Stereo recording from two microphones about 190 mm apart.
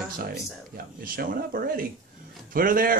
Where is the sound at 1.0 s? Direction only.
50° right (ahead or behind).